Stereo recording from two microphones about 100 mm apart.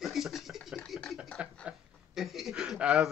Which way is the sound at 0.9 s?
Centre (ahead or behind).